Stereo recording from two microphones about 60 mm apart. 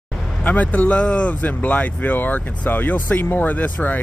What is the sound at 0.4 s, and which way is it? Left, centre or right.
Speech, left.